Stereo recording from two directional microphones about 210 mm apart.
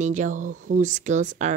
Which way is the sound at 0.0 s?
35° right (ahead or behind).